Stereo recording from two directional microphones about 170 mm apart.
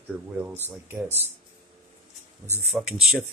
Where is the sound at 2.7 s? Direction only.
Centre (ahead or behind).